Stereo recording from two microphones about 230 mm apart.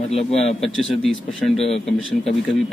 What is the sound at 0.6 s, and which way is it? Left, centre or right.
Speech, centre.